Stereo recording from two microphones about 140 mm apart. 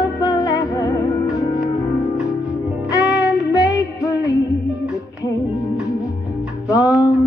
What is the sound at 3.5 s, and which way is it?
Music, 25° left (ahead or behind).